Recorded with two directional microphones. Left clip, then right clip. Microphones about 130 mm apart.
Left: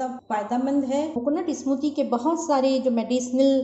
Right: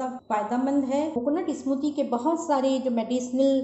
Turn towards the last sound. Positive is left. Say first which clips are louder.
# left 3 dB
turn(degrees=20)  # may be behind; listen again after turning